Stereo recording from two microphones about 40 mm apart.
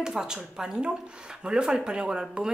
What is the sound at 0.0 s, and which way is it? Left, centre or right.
Speech, centre.